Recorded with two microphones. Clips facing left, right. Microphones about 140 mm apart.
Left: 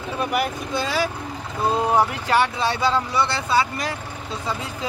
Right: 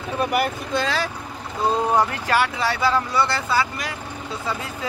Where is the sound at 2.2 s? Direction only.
25° left (ahead or behind).